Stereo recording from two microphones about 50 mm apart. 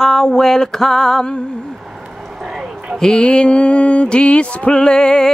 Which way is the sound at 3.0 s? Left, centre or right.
Centre.